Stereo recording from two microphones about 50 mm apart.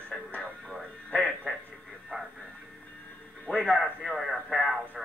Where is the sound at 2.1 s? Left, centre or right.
Right.